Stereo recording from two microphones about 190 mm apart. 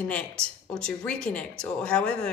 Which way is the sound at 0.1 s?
5° left (ahead or behind).